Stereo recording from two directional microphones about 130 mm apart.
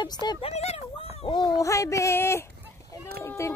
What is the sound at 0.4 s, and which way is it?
Speech, 55° left (ahead or behind).